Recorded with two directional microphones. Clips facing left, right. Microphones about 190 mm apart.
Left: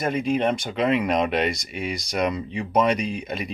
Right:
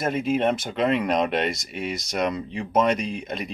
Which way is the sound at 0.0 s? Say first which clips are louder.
Even; centre (ahead or behind).